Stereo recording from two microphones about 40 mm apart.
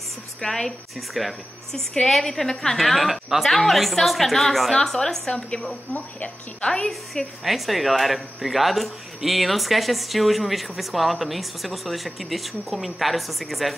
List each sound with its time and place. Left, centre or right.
0.5 s a woman's voice: centre
5.9 s speech: left
6.6 s a woman's voice: centre
6.9 s speech: centre